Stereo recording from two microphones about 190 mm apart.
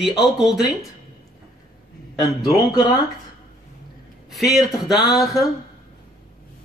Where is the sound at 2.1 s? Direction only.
20° left (ahead or behind).